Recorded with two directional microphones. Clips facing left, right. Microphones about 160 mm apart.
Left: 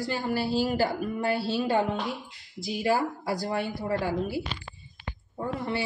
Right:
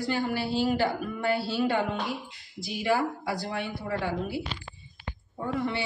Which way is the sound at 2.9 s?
40° left (ahead or behind).